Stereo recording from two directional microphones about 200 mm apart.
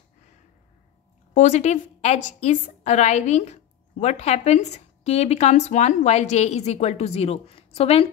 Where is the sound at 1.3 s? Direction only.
35° left (ahead or behind).